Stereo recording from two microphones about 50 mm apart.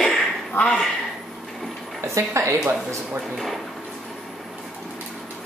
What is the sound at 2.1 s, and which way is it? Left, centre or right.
Speech, right.